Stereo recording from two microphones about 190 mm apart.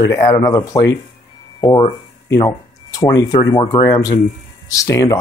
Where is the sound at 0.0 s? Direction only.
15° left (ahead or behind).